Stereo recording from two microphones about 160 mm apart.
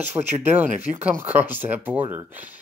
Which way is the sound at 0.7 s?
50° right (ahead or behind).